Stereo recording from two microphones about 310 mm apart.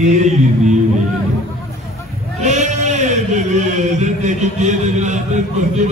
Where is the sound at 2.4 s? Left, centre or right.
Right.